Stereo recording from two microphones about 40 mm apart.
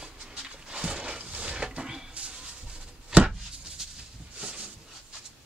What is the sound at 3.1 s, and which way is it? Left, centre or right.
Chopping, right.